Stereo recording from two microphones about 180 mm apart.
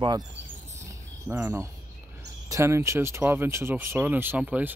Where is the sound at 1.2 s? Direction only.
10° right (ahead or behind).